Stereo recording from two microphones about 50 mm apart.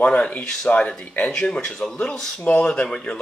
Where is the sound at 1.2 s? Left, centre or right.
Centre.